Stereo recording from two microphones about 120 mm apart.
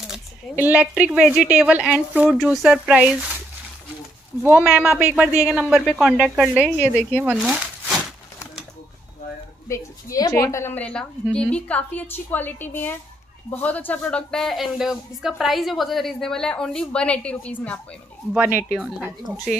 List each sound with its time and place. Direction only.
0.6 s speech: 10° right (ahead or behind)
4.4 s speech: 10° right (ahead or behind)
6.8 s a woman's voice: 20° left (ahead or behind)
7.2 s speech: 10° right (ahead or behind)
9.7 s a woman's voice: 30° left (ahead or behind)
10.8 s a woman's voice: 10° left (ahead or behind)
18.3 s speech: 15° right (ahead or behind)
18.8 s speech: 5° right (ahead or behind)